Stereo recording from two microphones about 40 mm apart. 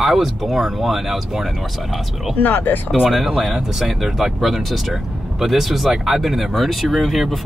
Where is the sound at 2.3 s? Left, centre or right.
Left.